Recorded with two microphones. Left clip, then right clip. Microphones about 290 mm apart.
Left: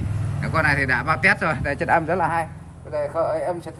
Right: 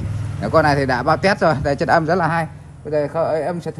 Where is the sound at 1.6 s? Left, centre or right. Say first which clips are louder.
Right 4 dB; left.